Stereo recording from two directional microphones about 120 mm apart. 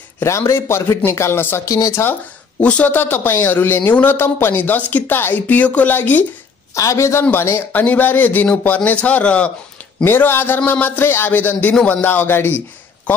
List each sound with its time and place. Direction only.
0.2 s speech: 25° left (ahead or behind)
2.6 s speech: 10° left (ahead or behind)